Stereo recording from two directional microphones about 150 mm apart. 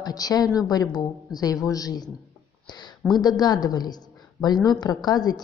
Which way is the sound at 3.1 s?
25° left (ahead or behind).